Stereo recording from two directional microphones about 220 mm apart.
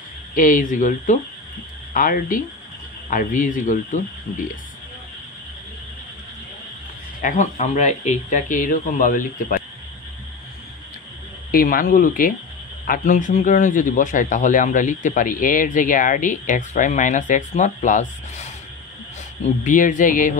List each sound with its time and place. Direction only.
0.3 s speech: 35° left (ahead or behind)
7.2 s speech: 35° left (ahead or behind)
11.5 s speech: 40° left (ahead or behind)